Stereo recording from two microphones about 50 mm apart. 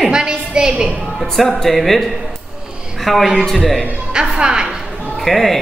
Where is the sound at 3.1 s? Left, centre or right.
Centre.